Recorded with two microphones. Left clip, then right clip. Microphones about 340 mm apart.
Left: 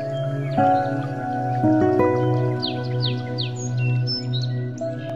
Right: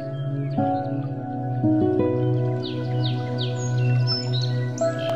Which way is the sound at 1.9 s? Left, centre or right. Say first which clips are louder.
Left 4 dB; centre.